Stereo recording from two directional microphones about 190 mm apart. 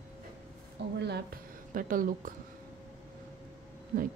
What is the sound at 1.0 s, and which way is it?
A woman's voice, 55° right (ahead or behind).